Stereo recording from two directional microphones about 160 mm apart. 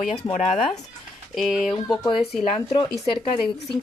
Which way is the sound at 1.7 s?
30° left (ahead or behind).